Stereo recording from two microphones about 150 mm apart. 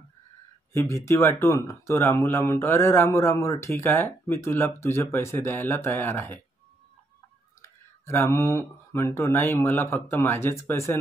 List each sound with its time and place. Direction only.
0.7 s speech: 20° left (ahead or behind)
7.6 s speech: 20° left (ahead or behind)